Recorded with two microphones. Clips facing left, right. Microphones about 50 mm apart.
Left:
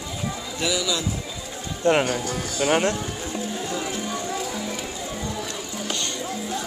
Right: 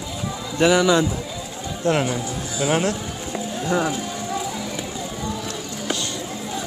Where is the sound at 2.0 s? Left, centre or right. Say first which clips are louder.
Even; left.